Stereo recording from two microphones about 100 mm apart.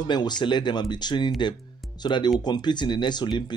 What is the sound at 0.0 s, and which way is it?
Speech, 45° left (ahead or behind).